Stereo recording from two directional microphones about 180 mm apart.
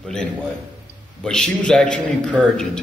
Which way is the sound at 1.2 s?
5° left (ahead or behind).